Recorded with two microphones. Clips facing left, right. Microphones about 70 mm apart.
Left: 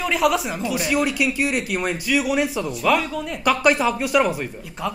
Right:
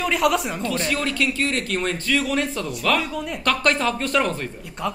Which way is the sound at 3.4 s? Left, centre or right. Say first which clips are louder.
Left 3 dB; centre.